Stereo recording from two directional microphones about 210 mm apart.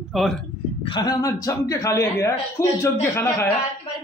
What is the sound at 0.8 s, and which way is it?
A man's voice, 20° left (ahead or behind).